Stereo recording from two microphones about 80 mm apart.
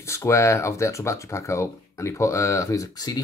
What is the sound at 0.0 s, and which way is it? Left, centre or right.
Speech, left.